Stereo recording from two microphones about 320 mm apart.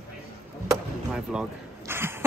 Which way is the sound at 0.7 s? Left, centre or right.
Centre.